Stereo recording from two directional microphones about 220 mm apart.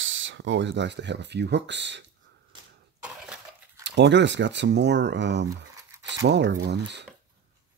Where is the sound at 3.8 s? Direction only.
55° right (ahead or behind).